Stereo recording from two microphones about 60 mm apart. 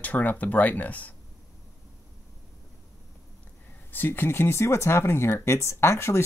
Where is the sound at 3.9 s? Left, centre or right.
Left.